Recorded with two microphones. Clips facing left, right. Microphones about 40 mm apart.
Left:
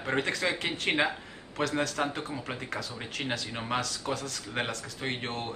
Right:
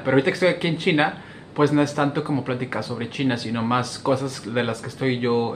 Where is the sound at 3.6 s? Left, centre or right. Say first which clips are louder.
Right 9 dB; centre.